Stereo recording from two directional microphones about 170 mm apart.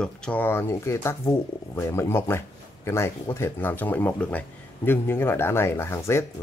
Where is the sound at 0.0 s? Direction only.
5° left (ahead or behind).